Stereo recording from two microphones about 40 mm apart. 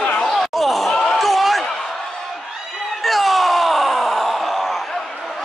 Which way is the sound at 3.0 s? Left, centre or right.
Centre.